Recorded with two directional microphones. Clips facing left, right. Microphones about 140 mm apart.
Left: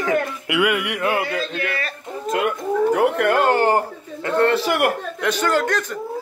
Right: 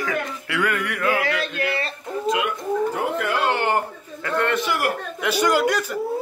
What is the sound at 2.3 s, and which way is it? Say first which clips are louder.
Speech: left 2 dB; 50° left (ahead or behind).